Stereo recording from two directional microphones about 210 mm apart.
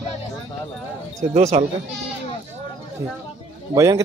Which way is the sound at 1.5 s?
35° right (ahead or behind).